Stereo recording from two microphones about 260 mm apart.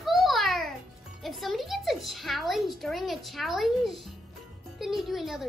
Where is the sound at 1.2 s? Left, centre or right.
Centre.